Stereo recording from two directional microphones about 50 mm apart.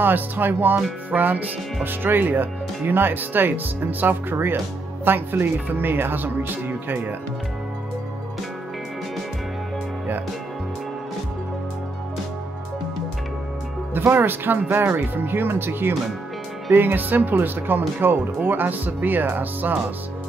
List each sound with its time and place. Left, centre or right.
0.0 s speech: right
13.9 s speech: right